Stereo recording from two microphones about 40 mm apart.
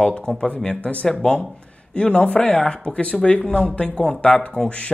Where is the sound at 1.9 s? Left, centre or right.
Left.